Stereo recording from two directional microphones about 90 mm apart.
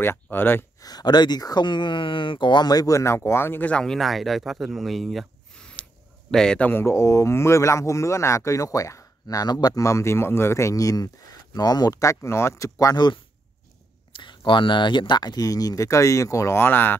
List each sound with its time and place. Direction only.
0.0 s speech: 25° left (ahead or behind)
0.7 s speech: 45° left (ahead or behind)
3.0 s speech: 30° left (ahead or behind)
3.7 s speech: 5° left (ahead or behind)
4.7 s a sound: centre (ahead or behind)
6.3 s speech: 10° left (ahead or behind)
6.7 s speech: 30° left (ahead or behind); by 9.8 s 50° left (ahead or behind)
9.8 s speech: 30° left (ahead or behind)